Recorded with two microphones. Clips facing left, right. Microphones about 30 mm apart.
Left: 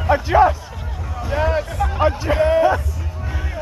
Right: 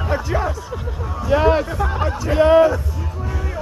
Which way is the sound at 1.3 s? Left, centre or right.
Centre.